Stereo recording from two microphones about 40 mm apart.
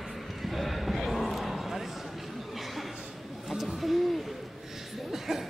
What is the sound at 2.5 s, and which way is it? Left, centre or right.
Chuckle, centre.